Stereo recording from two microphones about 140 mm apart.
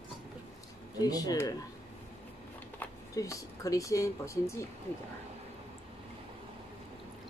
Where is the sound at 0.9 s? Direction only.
25° left (ahead or behind).